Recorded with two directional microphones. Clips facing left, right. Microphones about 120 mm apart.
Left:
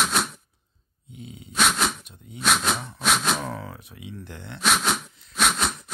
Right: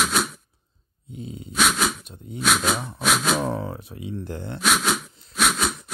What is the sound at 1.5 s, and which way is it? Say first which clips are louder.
Sneeze: right 1 dB; centre (ahead or behind).